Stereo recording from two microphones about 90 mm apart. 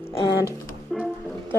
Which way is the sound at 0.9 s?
Centre (ahead or behind).